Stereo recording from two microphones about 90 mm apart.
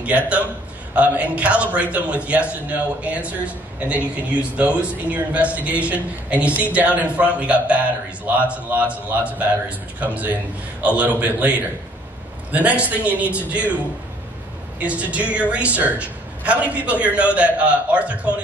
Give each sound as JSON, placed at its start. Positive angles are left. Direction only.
{"t": 0.9, "sound": "a woman's voice", "side_deg": -15}
{"t": 14.8, "sound": "a woman's voice", "side_deg": -15}